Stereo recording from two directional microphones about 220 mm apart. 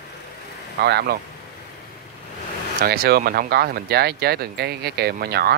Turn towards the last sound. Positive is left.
turn(degrees=-45)  # may be behind; listen again after turning